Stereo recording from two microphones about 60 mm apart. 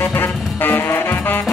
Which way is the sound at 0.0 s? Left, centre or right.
Left.